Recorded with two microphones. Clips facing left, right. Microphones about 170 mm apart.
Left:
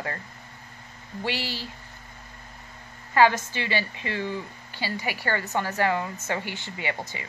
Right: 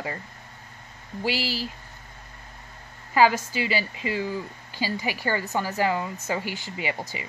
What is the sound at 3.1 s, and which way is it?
Speech, 10° right (ahead or behind).